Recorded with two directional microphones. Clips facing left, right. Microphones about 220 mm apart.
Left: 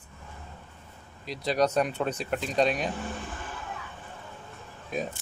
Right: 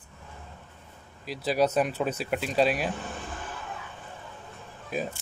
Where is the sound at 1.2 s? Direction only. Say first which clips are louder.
Right 1 dB; 5° right (ahead or behind).